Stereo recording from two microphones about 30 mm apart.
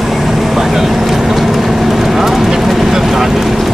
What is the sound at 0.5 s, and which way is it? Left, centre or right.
Speech, centre.